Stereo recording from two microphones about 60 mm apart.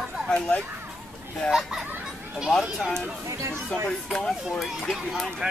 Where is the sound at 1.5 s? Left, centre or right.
Centre.